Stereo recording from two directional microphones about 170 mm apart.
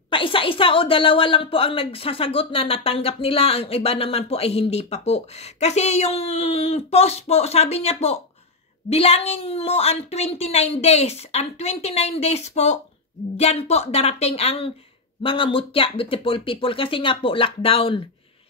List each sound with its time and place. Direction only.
0.1 s a woman's voice: 30° left (ahead or behind)